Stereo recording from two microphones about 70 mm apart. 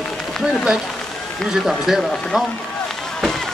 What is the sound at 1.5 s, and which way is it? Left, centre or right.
Speech, centre.